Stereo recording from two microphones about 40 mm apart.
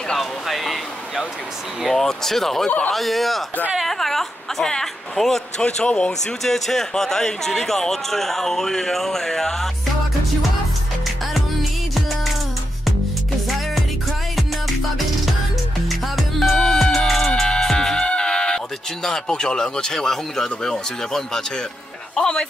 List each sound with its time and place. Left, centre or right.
0.2 s a sound: centre
2.0 s a man's voice: centre
5.6 s speech: left
6.4 s a man's voice: centre
15.9 s music: centre
16.5 s music: centre
19.0 s a man's voice: centre